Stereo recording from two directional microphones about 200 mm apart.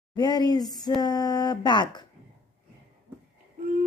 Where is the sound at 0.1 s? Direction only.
20° left (ahead or behind).